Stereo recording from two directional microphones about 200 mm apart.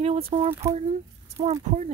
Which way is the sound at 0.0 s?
30° right (ahead or behind).